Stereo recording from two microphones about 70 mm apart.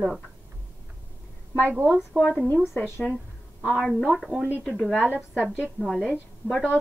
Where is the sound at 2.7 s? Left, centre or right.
Left.